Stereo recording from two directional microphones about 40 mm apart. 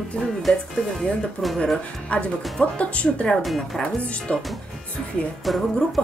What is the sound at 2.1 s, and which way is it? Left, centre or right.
Speech, left.